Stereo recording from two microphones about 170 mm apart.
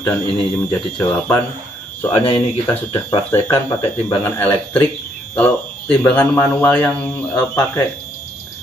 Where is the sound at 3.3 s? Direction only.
15° left (ahead or behind).